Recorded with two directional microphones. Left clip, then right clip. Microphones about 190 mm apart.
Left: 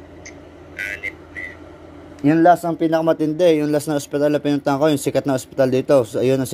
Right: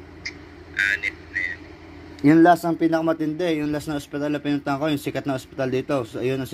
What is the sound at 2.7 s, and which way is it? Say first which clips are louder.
A man's voice: left 4 dB; 40° left (ahead or behind).